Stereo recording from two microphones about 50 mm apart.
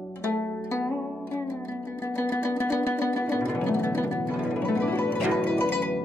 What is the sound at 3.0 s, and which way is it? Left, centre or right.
Music, left.